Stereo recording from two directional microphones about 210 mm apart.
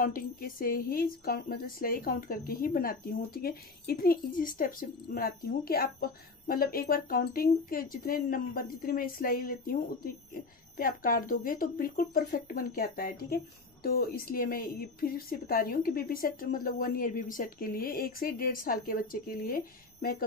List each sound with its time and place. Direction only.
0.0 s speech: 45° left (ahead or behind)